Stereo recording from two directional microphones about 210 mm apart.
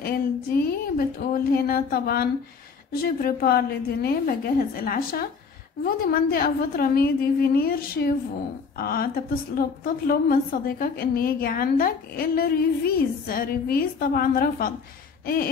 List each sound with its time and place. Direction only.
0.0 s a woman's voice: 45° left (ahead or behind)